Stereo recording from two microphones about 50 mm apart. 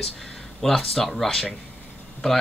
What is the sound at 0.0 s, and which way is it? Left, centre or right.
Speech, centre.